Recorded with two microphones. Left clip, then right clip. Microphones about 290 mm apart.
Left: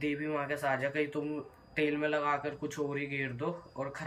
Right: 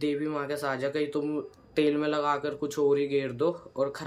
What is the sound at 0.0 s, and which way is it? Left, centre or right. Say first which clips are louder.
Speech: right 4 dB; centre.